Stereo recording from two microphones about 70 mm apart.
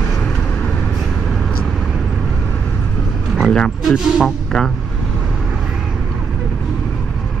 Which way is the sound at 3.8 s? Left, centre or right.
Centre.